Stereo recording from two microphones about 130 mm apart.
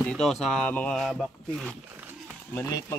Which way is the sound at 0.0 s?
5° left (ahead or behind).